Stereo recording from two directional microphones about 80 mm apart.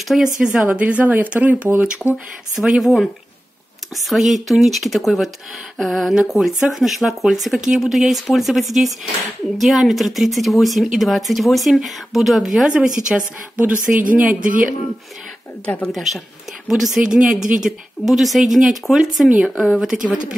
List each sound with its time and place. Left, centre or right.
0.4 s speech: centre
0.7 s speech: centre
2.5 s speech: centre
13.6 s speech: right
15.6 s speech: centre
15.9 s speech: centre